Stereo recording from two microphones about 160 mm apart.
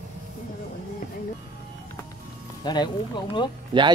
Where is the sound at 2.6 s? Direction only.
25° left (ahead or behind).